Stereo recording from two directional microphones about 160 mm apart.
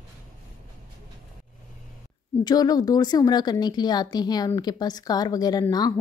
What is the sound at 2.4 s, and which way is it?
A woman's voice, 25° left (ahead or behind).